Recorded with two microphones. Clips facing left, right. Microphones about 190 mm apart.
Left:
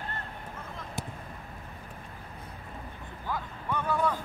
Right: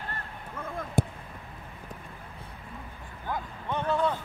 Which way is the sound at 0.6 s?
55° right (ahead or behind).